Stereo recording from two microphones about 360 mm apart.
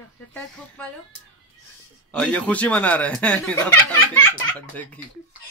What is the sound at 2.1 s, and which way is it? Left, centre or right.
Speech, centre.